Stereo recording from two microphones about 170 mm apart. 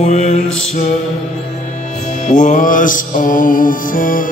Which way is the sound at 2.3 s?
50° left (ahead or behind).